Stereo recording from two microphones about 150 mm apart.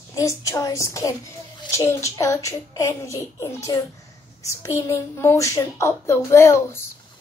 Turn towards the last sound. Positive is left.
turn(degrees=15)  # may be behind; listen again after turning